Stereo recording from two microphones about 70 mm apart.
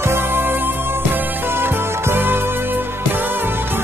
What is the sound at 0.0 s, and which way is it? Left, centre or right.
Music, right.